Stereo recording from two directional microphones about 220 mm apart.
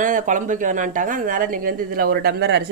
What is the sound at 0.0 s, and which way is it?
A woman's voice, 35° right (ahead or behind).